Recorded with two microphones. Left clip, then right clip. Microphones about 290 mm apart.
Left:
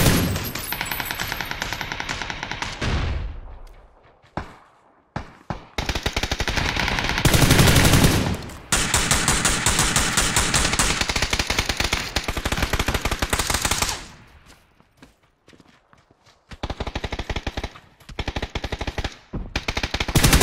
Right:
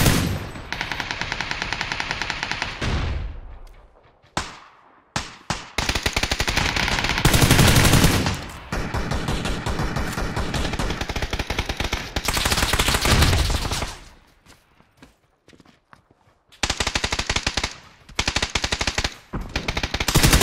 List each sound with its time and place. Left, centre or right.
0.0 s machine gun: centre
2.8 s a sound: centre
4.3 s fireworks: right
5.1 s basketball bounce: right
5.8 s machine gun: centre
6.6 s gunshot: centre
8.6 s a sound: left
11.0 s machine gun: centre
12.3 s machine gun: centre
16.6 s machine gun: right
19.5 s machine gun: centre